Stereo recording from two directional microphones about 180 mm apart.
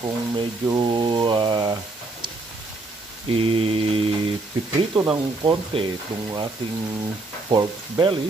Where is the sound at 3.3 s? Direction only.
30° right (ahead or behind).